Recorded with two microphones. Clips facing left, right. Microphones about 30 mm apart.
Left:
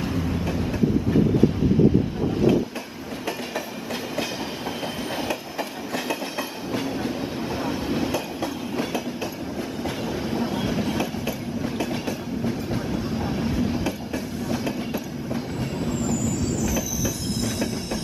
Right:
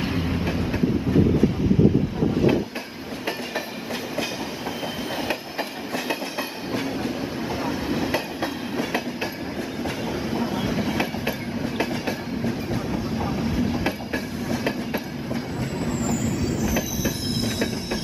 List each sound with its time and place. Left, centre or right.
0.0 s train: right
5.3 s train: right
6.7 s train: centre
10.4 s train: centre
12.4 s train: centre
16.1 s train: right